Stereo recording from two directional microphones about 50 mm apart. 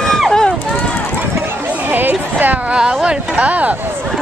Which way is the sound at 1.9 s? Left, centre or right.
Right.